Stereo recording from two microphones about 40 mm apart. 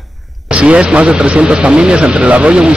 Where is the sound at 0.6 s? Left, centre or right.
Right.